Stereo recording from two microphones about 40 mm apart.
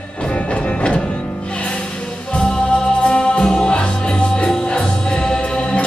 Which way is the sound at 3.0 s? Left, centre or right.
Left.